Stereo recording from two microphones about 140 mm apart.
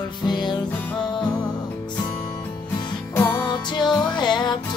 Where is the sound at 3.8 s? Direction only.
30° left (ahead or behind).